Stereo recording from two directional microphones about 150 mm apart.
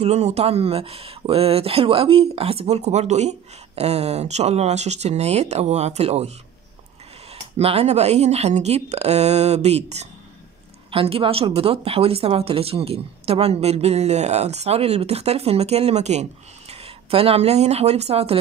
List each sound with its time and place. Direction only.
0.0 s speech: 45° right (ahead or behind)
7.5 s speech: 45° right (ahead or behind)